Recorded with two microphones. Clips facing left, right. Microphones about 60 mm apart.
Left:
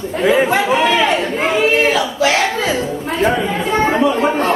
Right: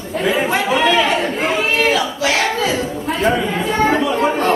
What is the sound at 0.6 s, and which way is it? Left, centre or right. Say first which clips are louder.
Chatter: left 1 dB; left.